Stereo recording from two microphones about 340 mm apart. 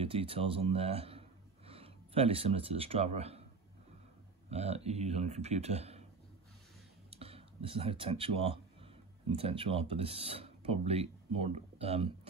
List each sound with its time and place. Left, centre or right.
0.0 s speech: centre
4.5 s speech: centre
7.1 s speech: centre